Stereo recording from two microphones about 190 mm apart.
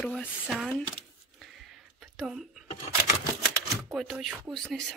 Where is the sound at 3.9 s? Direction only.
Centre (ahead or behind).